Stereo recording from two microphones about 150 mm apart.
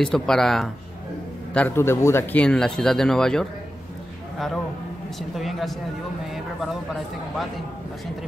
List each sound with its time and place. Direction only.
0.0 s a man's voice: 5° left (ahead or behind)
2.4 s speech: 5° left (ahead or behind)
5.3 s speech: centre (ahead or behind)